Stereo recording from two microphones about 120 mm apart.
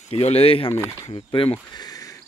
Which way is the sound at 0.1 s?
55° left (ahead or behind).